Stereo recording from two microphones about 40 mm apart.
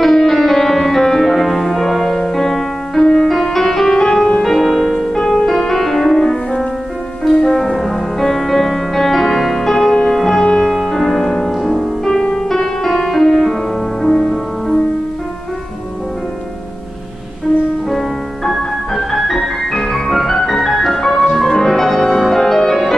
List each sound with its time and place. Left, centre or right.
0.0 s music: centre
12.1 s music: centre
17.8 s music: centre